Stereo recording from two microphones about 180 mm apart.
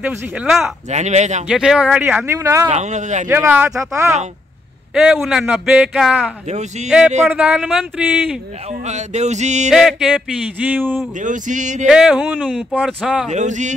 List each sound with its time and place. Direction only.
0.0 s speech: 5° right (ahead or behind)
0.8 s speech: 40° right (ahead or behind)
1.5 s speech: 5° right (ahead or behind)
2.7 s speech: 40° right (ahead or behind)
3.3 s speech: 10° right (ahead or behind)
4.9 s a man's voice: 5° right (ahead or behind)
6.4 s speech: 40° right (ahead or behind)
7.2 s speech: 5° right (ahead or behind)
8.6 s speech: 40° right (ahead or behind)
9.7 s a man's voice: 5° right (ahead or behind)
11.1 s a sound: 45° right (ahead or behind)
11.9 s speech: 5° right (ahead or behind)
13.3 s speech: 40° right (ahead or behind)